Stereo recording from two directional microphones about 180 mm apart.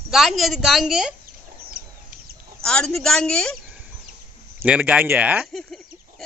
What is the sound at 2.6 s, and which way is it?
Speech, 5° left (ahead or behind).